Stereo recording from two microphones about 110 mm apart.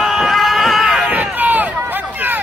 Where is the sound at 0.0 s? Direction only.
Centre (ahead or behind).